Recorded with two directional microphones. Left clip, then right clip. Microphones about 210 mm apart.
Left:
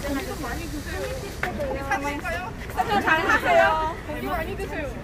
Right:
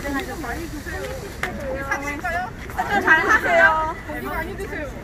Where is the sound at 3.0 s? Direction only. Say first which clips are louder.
Right 6 dB; 25° left (ahead or behind).